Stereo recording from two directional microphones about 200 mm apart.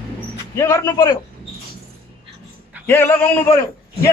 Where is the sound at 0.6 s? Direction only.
15° left (ahead or behind).